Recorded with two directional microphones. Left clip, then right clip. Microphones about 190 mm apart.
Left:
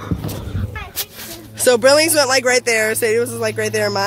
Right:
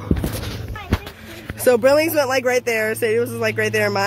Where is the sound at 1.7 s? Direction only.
Centre (ahead or behind).